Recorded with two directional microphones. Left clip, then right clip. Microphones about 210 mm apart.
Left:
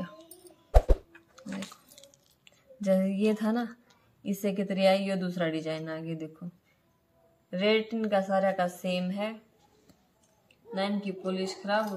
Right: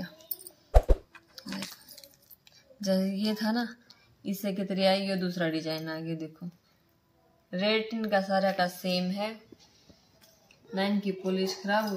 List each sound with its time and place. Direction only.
0.7 s a sound: centre (ahead or behind)
1.3 s dog: 30° left (ahead or behind)
2.8 s child singing: 25° left (ahead or behind)
4.2 s a woman's voice: 15° left (ahead or behind)
7.6 s a woman's voice: 10° left (ahead or behind)
10.7 s speech: 5° left (ahead or behind)